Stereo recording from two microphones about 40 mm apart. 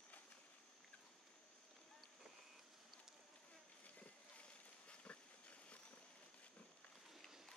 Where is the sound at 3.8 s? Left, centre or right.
Left.